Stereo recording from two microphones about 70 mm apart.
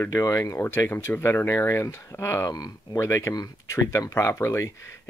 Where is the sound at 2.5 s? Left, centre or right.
Left.